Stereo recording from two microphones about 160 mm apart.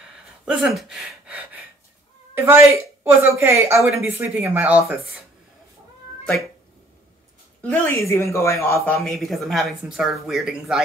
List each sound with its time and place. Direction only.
0.5 s speech: centre (ahead or behind)
7.6 s speech: 10° left (ahead or behind)
9.0 s speech: centre (ahead or behind)